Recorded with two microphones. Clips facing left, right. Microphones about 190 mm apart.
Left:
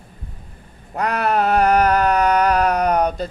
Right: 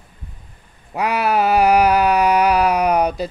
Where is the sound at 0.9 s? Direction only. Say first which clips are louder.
Right 1 dB; 5° right (ahead or behind).